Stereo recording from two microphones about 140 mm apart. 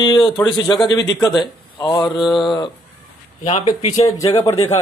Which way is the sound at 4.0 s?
25° left (ahead or behind).